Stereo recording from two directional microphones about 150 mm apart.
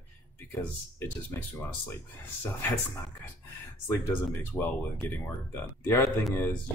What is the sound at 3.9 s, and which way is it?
Speech, 15° left (ahead or behind).